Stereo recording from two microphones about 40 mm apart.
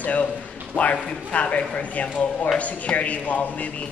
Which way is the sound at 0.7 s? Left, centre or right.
Left.